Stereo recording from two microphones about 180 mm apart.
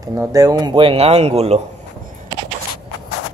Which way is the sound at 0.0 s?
20° right (ahead or behind).